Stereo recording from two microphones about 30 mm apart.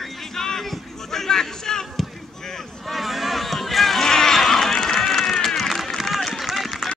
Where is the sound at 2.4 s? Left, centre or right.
Centre.